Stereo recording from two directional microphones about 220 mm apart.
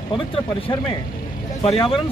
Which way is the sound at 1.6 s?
25° left (ahead or behind).